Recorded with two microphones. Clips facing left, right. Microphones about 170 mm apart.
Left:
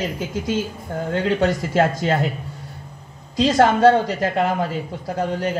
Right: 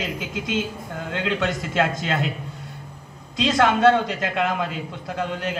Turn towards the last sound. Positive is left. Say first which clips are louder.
# left 4 dB
turn(degrees=40)  # may be behind; listen again after turning